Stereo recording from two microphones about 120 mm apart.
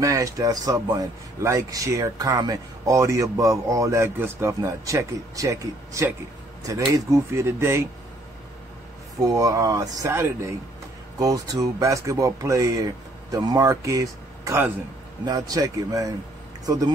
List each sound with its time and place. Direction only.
0.0 s speech: 30° right (ahead or behind)
9.2 s speech: 30° right (ahead or behind)